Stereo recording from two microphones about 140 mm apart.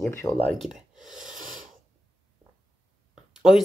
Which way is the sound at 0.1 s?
15° left (ahead or behind).